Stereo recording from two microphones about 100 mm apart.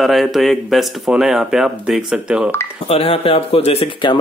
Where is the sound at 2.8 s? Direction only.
90° left.